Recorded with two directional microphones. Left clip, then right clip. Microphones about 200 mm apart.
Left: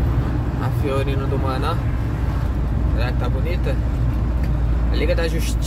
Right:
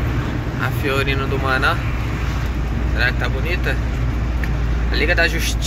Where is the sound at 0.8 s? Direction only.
15° left (ahead or behind).